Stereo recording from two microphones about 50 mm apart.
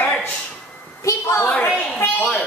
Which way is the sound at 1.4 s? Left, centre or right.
Left.